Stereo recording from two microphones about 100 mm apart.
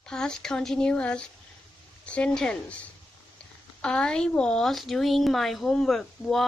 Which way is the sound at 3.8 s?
10° left (ahead or behind).